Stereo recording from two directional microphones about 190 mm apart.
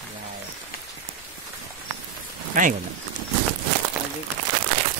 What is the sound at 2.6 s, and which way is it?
Speech, 45° right (ahead or behind).